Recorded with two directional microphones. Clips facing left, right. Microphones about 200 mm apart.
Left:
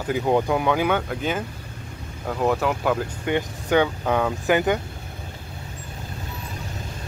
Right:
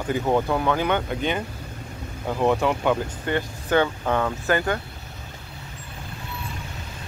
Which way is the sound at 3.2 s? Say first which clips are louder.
Left 3 dB; 15° left (ahead or behind).